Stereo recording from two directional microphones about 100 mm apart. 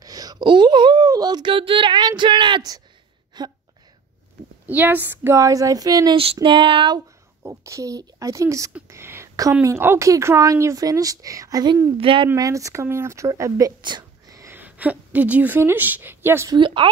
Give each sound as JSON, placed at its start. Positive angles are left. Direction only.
{"t": 0.0, "sound": "wail", "side_deg": -40}
{"t": 0.4, "sound": "speech", "side_deg": -55}
{"t": 1.5, "sound": "speech", "side_deg": -60}
{"t": 4.6, "sound": "a woman's voice", "side_deg": -20}
{"t": 6.4, "sound": "a sound", "side_deg": -55}
{"t": 7.4, "sound": "a woman's voice", "side_deg": -30}
{"t": 12.0, "sound": "a sound", "side_deg": -60}
{"t": 12.4, "sound": "a woman's voice", "side_deg": -35}
{"t": 14.5, "sound": "a woman's voice", "side_deg": -15}
{"t": 16.4, "sound": "a sound", "side_deg": -55}